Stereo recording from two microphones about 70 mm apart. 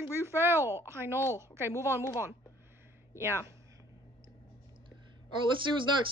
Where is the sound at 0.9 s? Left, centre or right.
Right.